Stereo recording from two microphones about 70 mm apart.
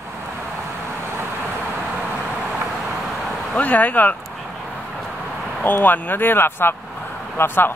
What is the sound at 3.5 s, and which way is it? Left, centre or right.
Speech, left.